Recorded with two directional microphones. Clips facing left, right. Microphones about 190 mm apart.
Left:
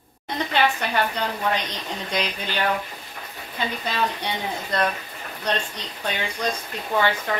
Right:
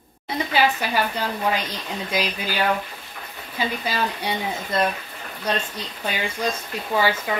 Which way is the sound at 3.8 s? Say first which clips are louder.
Even; 5° right (ahead or behind).